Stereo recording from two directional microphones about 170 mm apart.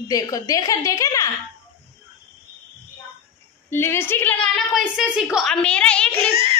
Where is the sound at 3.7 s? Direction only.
15° left (ahead or behind).